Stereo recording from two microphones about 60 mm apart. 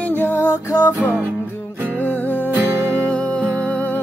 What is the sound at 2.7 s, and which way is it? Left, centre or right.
Music, right.